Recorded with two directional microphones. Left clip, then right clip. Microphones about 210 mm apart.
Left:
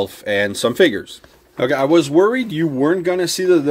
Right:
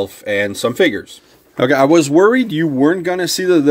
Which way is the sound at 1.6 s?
25° right (ahead or behind).